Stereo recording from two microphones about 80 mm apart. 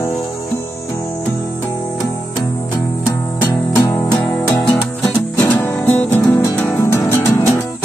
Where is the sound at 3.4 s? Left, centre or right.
Left.